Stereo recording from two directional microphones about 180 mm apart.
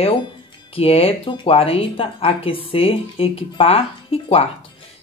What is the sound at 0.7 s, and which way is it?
Speech, 35° left (ahead or behind).